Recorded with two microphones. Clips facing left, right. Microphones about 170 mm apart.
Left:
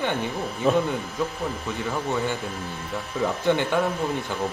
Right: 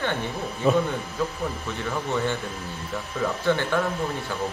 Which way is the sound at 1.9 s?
15° left (ahead or behind).